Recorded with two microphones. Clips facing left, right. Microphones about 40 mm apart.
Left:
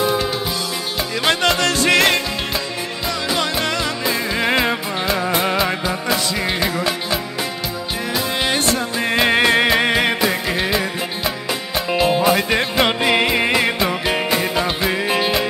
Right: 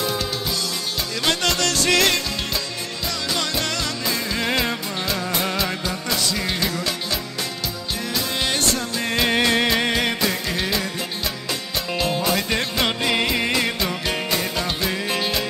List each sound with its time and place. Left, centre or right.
0.0 s music: centre
3.3 s music: centre
11.9 s music: centre